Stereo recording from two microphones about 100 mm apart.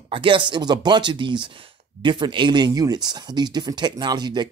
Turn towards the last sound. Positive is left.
turn(degrees=-50)  # may be behind; listen again after turning